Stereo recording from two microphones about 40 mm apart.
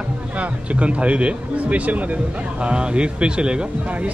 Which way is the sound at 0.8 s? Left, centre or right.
Right.